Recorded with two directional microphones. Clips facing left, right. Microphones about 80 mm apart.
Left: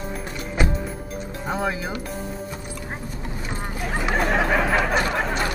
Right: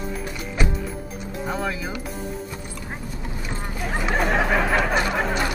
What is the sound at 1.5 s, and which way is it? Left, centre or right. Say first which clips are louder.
Music: left 2 dB; centre.